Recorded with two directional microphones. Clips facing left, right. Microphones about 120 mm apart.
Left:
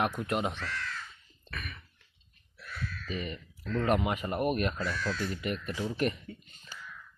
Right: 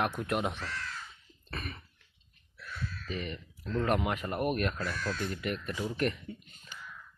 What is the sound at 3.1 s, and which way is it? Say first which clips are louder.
Speech: left 1 dB; 5° left (ahead or behind).